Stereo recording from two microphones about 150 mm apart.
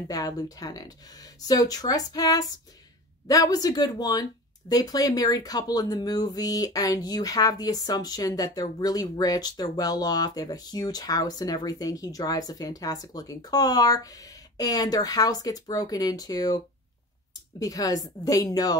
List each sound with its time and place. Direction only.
0.1 s speech: 25° left (ahead or behind)